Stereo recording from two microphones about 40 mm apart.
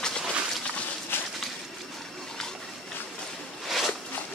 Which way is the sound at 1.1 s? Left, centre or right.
Left.